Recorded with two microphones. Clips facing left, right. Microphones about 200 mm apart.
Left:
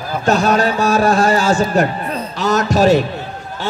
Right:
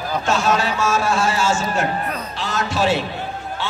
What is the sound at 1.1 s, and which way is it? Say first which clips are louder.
A man's voice: left 6 dB; 35° left (ahead or behind).